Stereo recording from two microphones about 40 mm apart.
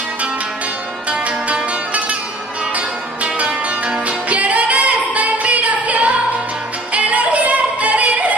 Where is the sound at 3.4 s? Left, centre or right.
Right.